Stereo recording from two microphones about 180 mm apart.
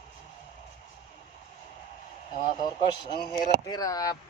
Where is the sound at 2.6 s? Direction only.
25° left (ahead or behind).